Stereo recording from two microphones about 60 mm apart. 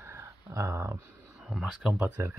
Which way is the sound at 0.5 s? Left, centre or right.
Right.